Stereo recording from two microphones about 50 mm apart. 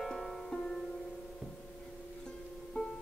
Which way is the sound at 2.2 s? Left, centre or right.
Centre.